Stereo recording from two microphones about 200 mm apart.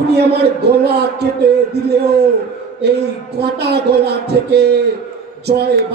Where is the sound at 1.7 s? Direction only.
55° right (ahead or behind).